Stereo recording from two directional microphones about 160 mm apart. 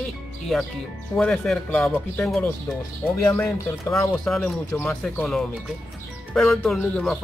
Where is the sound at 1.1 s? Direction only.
5° left (ahead or behind).